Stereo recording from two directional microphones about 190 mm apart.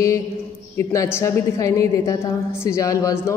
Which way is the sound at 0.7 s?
15° left (ahead or behind).